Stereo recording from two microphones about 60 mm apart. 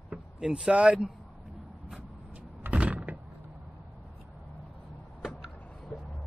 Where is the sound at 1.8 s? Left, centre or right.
Centre.